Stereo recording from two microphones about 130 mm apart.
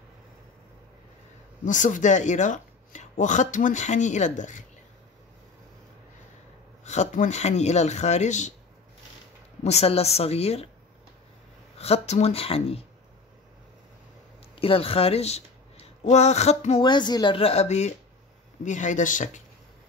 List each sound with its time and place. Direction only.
1.6 s speech: 75° left (ahead or behind)
6.8 s speech: 60° left (ahead or behind)
9.6 s speech: 55° left (ahead or behind)
11.8 s speech: 55° left (ahead or behind)
14.5 s a sound: 45° left (ahead or behind)
16.0 s speech: 60° left (ahead or behind)
16.8 s speech: 35° left (ahead or behind); by 17.9 s 60° left (ahead or behind)
18.6 s speech: 70° left (ahead or behind)